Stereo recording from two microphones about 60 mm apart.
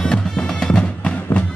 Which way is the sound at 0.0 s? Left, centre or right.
Centre.